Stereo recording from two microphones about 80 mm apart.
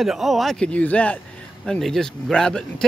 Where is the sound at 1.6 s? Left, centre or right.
Centre.